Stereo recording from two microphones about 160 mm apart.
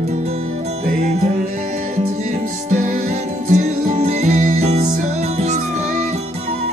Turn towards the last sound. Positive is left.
turn(degrees=-50)  # may be behind; listen again after turning